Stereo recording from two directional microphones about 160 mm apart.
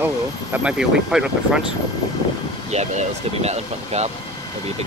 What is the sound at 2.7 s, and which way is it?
Speech, 45° right (ahead or behind).